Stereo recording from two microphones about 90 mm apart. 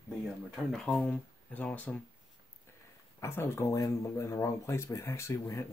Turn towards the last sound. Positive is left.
turn(degrees=35)  # may be behind; listen again after turning